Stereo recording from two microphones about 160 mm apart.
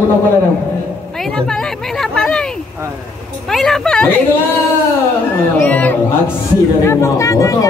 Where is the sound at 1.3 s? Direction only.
5° left (ahead or behind).